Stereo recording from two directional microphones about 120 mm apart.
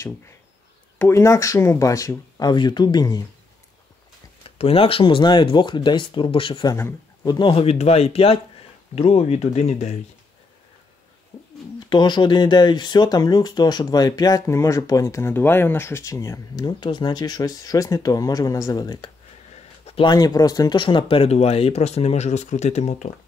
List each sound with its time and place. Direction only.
0.9 s speech: 20° left (ahead or behind)
4.6 s speech: 50° left (ahead or behind)
6.7 s a man's voice: 30° left (ahead or behind)
7.5 s speech: 60° left (ahead or behind); by 9.9 s 75° left (ahead or behind)
11.9 s speech: 40° left (ahead or behind)
19.5 s a sound: 65° left (ahead or behind)
20.0 s speech: 35° left (ahead or behind); by 23.1 s 80° left